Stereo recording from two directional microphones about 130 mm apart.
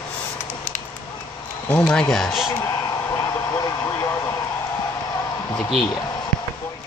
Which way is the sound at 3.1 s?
25° left (ahead or behind).